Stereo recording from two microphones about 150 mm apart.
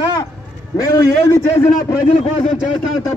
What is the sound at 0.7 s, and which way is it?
Speech, 20° left (ahead or behind).